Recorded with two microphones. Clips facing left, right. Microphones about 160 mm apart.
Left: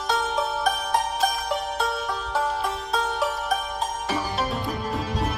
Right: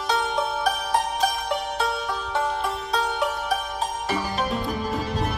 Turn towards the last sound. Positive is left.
turn(degrees=0)  # may be behind; listen again after turning